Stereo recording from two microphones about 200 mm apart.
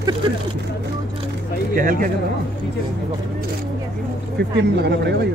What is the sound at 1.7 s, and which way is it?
Speech, 45° right (ahead or behind).